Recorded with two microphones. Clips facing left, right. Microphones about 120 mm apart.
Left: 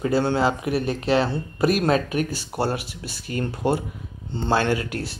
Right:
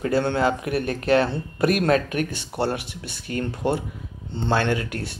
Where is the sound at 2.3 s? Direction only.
5° left (ahead or behind).